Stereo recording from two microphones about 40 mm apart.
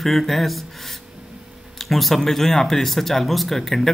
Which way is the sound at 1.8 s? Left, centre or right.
Centre.